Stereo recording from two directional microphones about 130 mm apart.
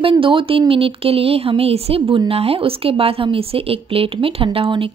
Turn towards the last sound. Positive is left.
turn(degrees=-45)  # may be behind; listen again after turning